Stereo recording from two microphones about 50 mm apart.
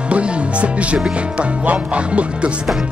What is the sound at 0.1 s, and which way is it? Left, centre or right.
Speech, right.